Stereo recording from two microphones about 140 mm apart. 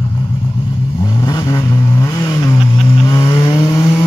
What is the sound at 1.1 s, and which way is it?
Vehicle, 25° left (ahead or behind).